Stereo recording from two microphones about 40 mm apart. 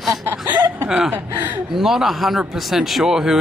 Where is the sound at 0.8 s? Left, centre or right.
Centre.